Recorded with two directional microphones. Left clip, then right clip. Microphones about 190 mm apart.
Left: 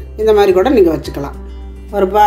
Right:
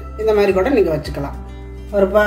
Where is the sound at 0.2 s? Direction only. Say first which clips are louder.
Left 5 dB; 40° left (ahead or behind).